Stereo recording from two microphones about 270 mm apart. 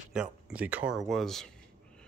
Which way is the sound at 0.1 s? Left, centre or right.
Centre.